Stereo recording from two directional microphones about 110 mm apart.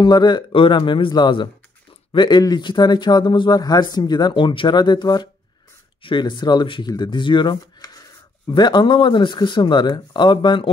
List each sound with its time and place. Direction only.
0.0 s speech: 40° left (ahead or behind)